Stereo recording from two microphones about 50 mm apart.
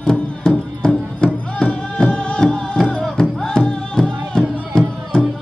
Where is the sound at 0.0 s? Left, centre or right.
Centre.